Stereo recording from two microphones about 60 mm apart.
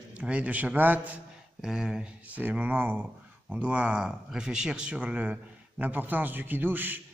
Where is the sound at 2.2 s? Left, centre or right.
Right.